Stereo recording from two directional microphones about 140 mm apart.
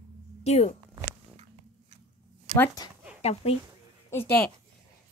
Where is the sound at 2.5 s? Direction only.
50° right (ahead or behind).